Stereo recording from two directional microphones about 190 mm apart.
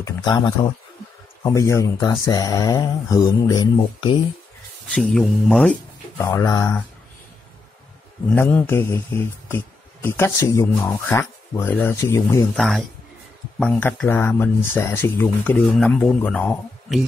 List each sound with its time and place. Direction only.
0.0 s speech: 20° left (ahead or behind)
4.9 s speech: 5° left (ahead or behind)
8.3 s speech: 10° left (ahead or behind)
12.5 s a man's voice: centre (ahead or behind)